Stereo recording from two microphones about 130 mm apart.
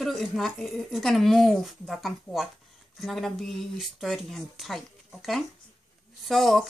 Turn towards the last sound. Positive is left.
turn(degrees=0)  # may be behind; listen again after turning